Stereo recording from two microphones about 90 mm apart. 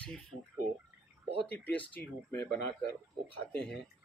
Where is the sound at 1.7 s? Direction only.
15° left (ahead or behind).